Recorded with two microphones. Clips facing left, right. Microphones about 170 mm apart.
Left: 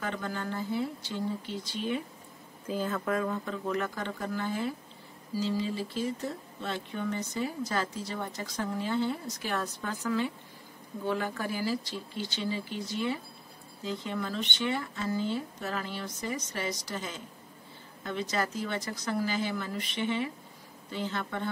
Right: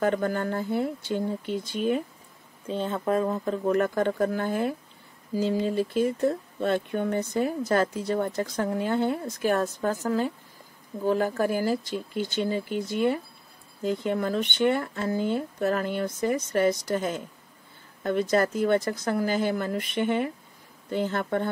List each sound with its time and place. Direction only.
0.0 s speech: 50° right (ahead or behind)
2.7 s speech: 25° right (ahead or behind); by 21.5 s 50° right (ahead or behind)